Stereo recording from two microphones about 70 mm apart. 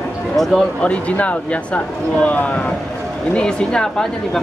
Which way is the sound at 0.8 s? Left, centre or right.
Centre.